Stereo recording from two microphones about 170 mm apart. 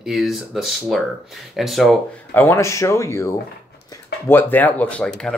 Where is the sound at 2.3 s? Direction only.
15° left (ahead or behind).